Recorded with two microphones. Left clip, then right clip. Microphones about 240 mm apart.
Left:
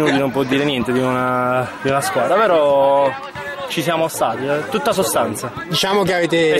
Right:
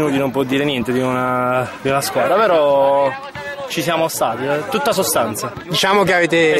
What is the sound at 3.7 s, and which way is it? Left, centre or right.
Speech, centre.